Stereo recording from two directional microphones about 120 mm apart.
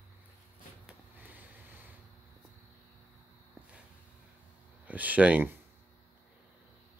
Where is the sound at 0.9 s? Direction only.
15° right (ahead or behind).